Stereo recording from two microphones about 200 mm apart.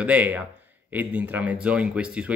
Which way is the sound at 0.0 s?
10° right (ahead or behind).